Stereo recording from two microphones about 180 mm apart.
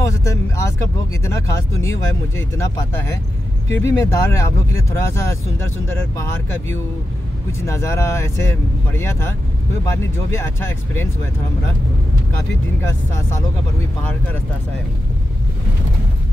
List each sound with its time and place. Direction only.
0.0 s speech: 15° left (ahead or behind)
7.6 s speech: 15° left (ahead or behind)